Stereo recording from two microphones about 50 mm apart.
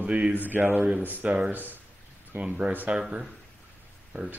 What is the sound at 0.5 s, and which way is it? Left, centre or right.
Speech, right.